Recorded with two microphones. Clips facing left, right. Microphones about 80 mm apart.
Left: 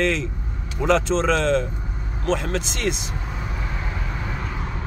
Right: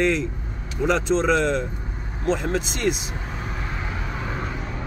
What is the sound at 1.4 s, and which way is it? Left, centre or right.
Speech, centre.